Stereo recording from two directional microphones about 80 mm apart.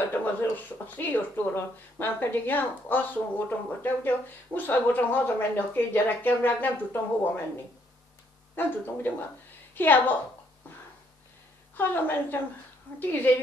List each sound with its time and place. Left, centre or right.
0.9 s a woman's voice: left
8.5 s a woman's voice: left
11.7 s a woman's voice: left